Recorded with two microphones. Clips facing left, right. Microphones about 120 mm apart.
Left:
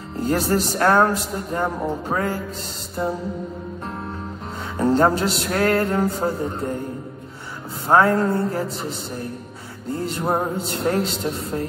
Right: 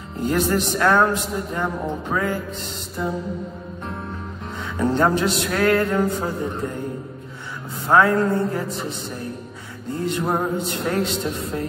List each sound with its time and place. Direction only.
0.2 s music: 35° left (ahead or behind)
4.7 s music: 30° left (ahead or behind)
7.9 s music: 30° left (ahead or behind)
9.9 s music: 30° left (ahead or behind)